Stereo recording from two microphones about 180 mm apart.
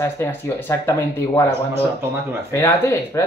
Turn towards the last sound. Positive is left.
turn(degrees=15)  # may be behind; listen again after turning